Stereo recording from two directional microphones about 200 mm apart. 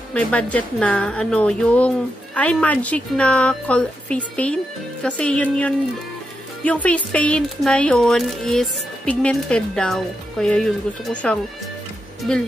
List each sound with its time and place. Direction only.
0.1 s a woman's voice: 5° left (ahead or behind)